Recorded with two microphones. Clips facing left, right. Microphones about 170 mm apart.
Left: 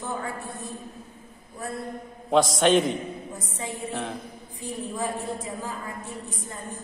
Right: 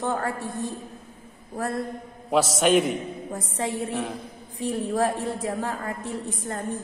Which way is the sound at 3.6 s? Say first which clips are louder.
Right 4 dB; 75° right (ahead or behind).